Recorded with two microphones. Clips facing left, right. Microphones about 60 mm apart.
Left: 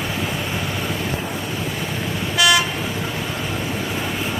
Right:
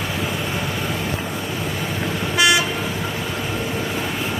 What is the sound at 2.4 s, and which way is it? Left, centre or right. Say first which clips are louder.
Vehicle: even; right.